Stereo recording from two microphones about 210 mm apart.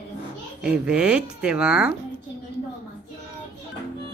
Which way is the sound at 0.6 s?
5° right (ahead or behind).